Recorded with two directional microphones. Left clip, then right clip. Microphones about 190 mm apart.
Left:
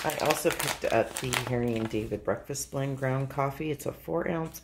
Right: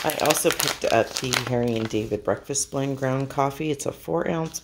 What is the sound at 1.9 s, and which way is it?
Speech, 35° right (ahead or behind).